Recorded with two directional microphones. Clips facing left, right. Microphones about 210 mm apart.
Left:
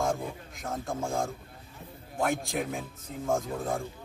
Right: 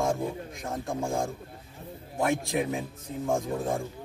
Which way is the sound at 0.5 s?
Centre (ahead or behind).